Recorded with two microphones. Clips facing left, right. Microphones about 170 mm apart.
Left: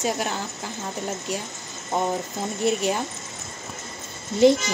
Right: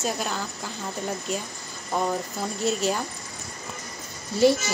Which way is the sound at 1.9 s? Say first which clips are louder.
Left 1 dB; 20° left (ahead or behind).